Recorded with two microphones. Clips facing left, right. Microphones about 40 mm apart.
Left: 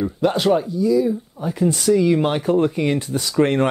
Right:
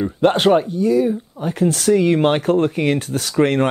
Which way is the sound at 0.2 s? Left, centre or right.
Right.